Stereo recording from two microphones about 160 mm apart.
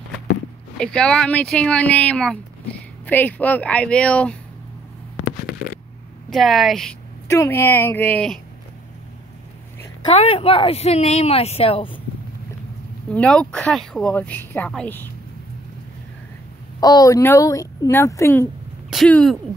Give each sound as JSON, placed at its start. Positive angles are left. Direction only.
{"t": 0.7, "sound": "speech", "side_deg": 5}
{"t": 5.5, "sound": "a sound", "side_deg": 70}
{"t": 6.3, "sound": "a woman's voice", "side_deg": 0}
{"t": 7.2, "sound": "speech", "side_deg": 15}
{"t": 10.0, "sound": "speech", "side_deg": 35}
{"t": 13.1, "sound": "speech", "side_deg": 5}
{"t": 16.8, "sound": "speech", "side_deg": 25}
{"t": 18.9, "sound": "speech", "side_deg": 5}